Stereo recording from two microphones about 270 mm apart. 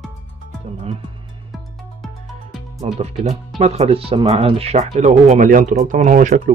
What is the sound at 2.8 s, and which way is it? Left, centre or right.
Speech, right.